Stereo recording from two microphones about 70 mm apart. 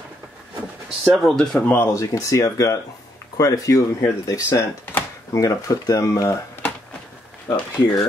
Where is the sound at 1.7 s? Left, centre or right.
Left.